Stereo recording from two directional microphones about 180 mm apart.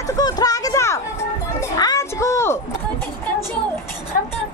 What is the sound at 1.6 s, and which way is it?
Music, 20° left (ahead or behind).